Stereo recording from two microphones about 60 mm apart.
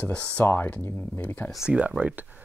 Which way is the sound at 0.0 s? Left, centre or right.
Left.